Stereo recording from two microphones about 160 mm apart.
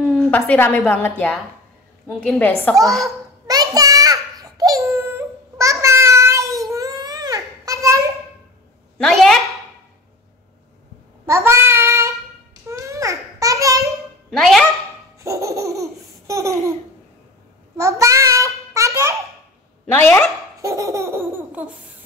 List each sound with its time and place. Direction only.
0.3 s a woman's voice: 10° left (ahead or behind)
3.4 s a sound: 25° right (ahead or behind)
8.9 s a sound: 5° left (ahead or behind)
11.2 s child singing: 20° right (ahead or behind)
12.6 s babbling: 20° right (ahead or behind)
14.3 s dog: centre (ahead or behind)
15.1 s laughter: 20° right (ahead or behind)
17.7 s child singing: 20° right (ahead or behind)
20.6 s laughter: 20° right (ahead or behind)